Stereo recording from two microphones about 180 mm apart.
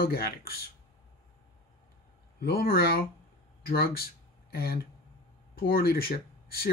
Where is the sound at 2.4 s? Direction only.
60° left (ahead or behind).